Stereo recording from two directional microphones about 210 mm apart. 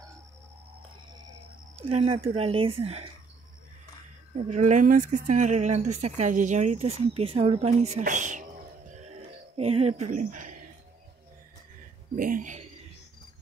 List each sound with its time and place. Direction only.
1.9 s speech: 30° right (ahead or behind)
4.4 s speech: 35° right (ahead or behind)
9.6 s speech: 30° right (ahead or behind)
12.2 s speech: 40° right (ahead or behind)